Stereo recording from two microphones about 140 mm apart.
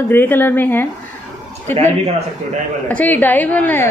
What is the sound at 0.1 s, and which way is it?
Speech, 15° left (ahead or behind).